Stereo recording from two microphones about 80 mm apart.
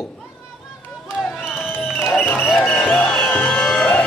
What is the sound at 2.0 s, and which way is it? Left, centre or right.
Music, left.